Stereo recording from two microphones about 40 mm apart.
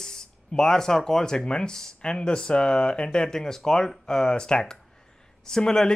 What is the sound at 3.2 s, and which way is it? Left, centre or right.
Speech, centre.